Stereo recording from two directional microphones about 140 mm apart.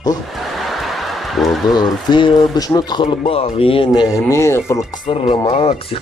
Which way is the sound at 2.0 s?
35° left (ahead or behind).